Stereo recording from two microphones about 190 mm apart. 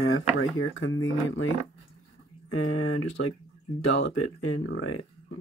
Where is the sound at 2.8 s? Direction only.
90° left.